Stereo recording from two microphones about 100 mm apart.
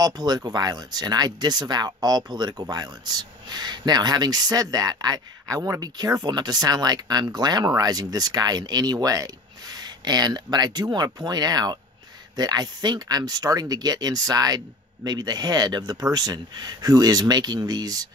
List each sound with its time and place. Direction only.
0.0 s speech: 45° right (ahead or behind)